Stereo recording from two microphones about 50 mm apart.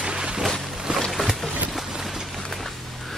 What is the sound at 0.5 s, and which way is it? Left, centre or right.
Music, centre.